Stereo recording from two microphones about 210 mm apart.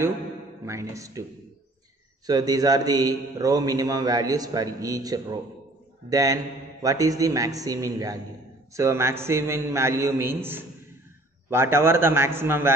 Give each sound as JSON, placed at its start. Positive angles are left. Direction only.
{"t": 0.7, "sound": "a man's voice", "side_deg": -15}
{"t": 2.2, "sound": "a man's voice", "side_deg": -20}